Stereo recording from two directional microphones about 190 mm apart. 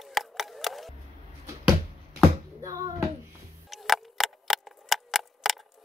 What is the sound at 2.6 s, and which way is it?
Speech, 20° right (ahead or behind).